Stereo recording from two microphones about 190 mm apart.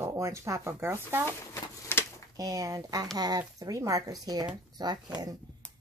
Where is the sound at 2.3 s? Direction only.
20° right (ahead or behind).